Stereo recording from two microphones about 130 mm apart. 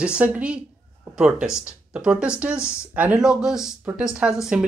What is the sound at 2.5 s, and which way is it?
Speech, 20° left (ahead or behind).